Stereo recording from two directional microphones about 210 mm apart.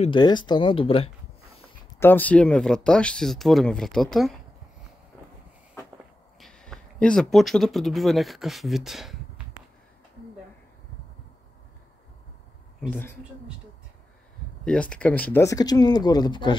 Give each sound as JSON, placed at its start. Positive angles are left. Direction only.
{"t": 0.0, "sound": "speech", "side_deg": 20}
{"t": 2.0, "sound": "speech", "side_deg": 10}
{"t": 6.4, "sound": "speech", "side_deg": 5}
{"t": 12.9, "sound": "speech", "side_deg": 10}
{"t": 14.6, "sound": "speech", "side_deg": 5}